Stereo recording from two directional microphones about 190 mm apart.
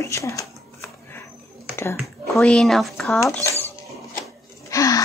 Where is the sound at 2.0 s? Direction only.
5° left (ahead or behind).